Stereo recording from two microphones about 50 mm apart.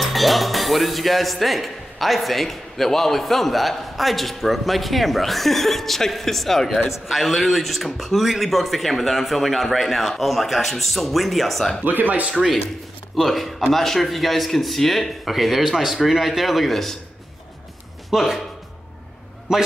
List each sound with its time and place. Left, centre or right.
0.0 s speech: centre
11.8 s speech: right
12.4 s speech: centre
18.1 s speech: centre
19.5 s speech: centre